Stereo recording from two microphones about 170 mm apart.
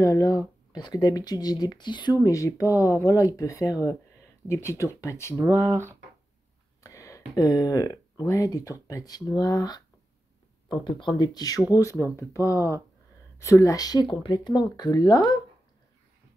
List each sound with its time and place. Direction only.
0.0 s speech: 20° left (ahead or behind)
2.6 s speech: 15° right (ahead or behind)
2.9 s speech: 20° left (ahead or behind)